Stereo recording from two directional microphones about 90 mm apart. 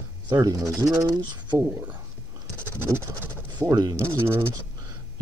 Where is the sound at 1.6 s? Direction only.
15° right (ahead or behind).